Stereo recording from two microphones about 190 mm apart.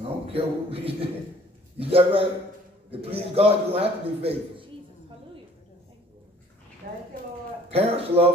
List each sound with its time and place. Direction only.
0.0 s a man's voice: 30° right (ahead or behind)
6.8 s a sound: 50° right (ahead or behind)
7.7 s a man's voice: 30° right (ahead or behind)